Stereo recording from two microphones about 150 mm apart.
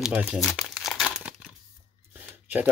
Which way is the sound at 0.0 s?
5° right (ahead or behind).